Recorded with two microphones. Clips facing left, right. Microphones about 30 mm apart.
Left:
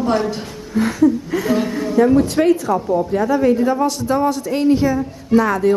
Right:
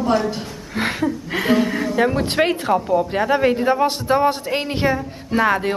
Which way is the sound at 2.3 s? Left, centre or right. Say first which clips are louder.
Left 2 dB; right.